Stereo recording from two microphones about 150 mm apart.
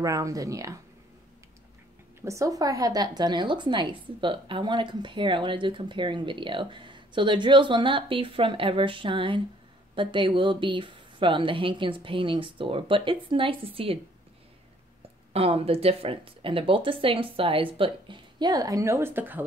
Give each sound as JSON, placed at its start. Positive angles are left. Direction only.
{"t": 0.0, "sound": "speech", "side_deg": -20}
{"t": 2.2, "sound": "a woman's voice", "side_deg": -20}
{"t": 15.3, "sound": "a woman's voice", "side_deg": -40}